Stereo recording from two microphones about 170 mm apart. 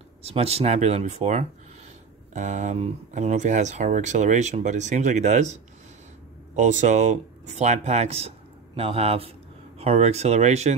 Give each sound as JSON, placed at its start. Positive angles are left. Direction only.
{"t": 0.2, "sound": "speech", "side_deg": -35}